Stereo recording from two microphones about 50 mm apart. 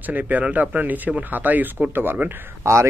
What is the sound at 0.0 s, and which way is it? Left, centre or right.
Speech, right.